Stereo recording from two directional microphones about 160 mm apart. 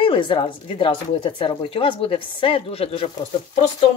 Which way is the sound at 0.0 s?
30° left (ahead or behind).